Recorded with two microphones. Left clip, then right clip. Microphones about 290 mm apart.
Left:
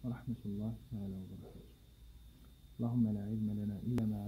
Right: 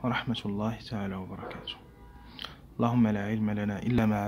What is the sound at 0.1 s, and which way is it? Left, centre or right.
Speech, centre.